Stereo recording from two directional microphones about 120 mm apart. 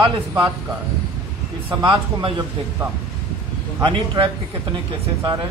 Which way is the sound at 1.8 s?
45° right (ahead or behind).